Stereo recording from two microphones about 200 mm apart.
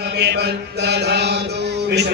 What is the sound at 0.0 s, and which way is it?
Chant, 55° right (ahead or behind).